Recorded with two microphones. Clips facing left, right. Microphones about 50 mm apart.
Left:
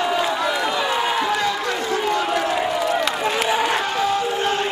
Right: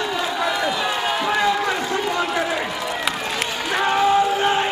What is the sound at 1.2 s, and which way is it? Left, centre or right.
Run, centre.